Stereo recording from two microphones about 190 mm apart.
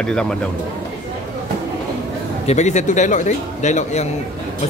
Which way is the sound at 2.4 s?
35° left (ahead or behind).